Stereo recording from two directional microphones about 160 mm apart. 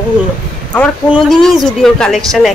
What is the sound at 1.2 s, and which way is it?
Speech, centre (ahead or behind).